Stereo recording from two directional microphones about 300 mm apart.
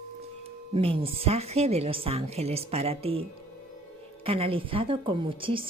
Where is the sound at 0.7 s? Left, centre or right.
Centre.